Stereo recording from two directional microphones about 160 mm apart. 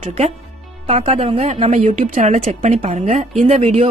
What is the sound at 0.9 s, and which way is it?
A woman's voice, 40° right (ahead or behind).